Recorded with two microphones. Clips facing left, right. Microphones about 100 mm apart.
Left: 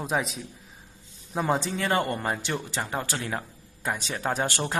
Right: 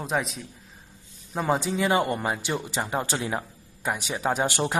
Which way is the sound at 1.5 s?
10° right (ahead or behind).